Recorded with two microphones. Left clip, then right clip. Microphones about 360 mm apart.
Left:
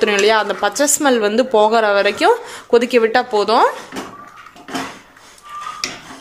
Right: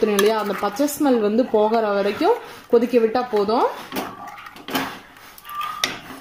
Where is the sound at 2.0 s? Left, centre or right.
Left.